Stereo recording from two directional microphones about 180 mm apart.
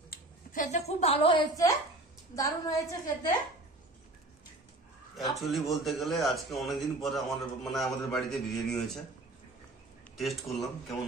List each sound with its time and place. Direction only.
0.1 s a woman's voice: 50° left (ahead or behind); by 3.0 s 20° left (ahead or behind)
5.1 s a man's voice: centre (ahead or behind)
10.1 s a man's voice: centre (ahead or behind)